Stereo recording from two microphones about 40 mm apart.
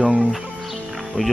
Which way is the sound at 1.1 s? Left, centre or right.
Right.